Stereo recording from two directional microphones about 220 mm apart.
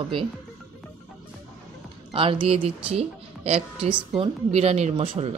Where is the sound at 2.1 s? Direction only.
25° right (ahead or behind).